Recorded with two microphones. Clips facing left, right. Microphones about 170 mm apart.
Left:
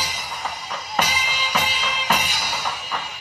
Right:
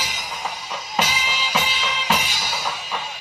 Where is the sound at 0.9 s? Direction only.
45° left (ahead or behind).